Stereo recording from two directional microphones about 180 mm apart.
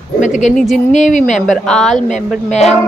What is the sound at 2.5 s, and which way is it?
Speech, 35° left (ahead or behind).